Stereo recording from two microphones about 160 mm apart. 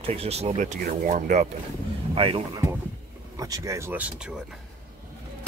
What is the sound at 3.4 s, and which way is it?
Speech, 20° right (ahead or behind).